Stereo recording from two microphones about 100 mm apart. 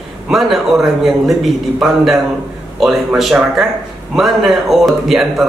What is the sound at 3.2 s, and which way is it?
Speech, 5° right (ahead or behind).